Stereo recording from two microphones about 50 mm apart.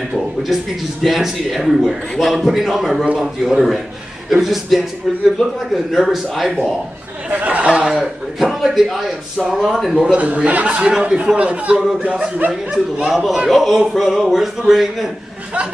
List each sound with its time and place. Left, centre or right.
1.0 s a man's voice: centre
7.2 s speech: right
7.8 s a man's voice: centre
10.1 s speech: right
10.8 s speech: centre
13.1 s a man's voice: centre